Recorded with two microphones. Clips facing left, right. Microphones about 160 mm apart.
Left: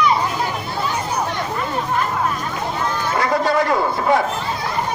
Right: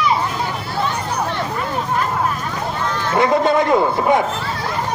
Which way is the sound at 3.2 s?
20° right (ahead or behind).